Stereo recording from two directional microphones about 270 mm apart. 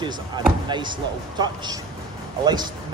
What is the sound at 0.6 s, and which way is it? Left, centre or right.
Speech, centre.